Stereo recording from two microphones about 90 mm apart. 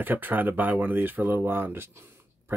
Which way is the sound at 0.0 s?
20° right (ahead or behind).